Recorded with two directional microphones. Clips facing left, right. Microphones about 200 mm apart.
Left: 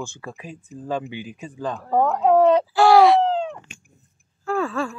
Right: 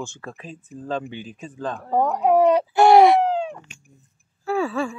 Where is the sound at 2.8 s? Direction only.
20° right (ahead or behind).